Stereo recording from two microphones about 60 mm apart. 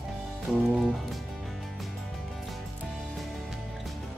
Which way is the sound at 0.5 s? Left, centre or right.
Centre.